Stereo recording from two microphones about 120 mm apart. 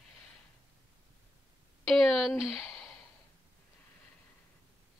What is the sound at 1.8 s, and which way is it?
Speech, centre (ahead or behind).